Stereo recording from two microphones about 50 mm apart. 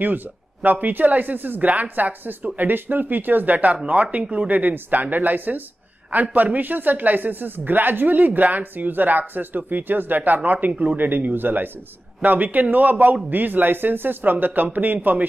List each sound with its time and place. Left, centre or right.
0.0 s speech: right